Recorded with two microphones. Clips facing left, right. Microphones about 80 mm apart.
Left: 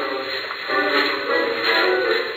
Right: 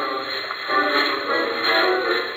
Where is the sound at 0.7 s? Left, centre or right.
Right.